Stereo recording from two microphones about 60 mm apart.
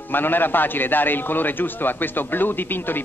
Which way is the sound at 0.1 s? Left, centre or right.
Left.